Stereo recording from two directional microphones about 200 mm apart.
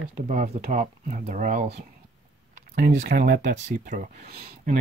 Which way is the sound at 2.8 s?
45° right (ahead or behind).